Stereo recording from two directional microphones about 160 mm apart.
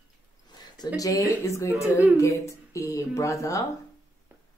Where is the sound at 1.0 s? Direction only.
20° left (ahead or behind).